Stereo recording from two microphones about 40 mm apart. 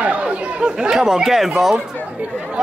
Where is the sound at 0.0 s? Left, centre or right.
Right.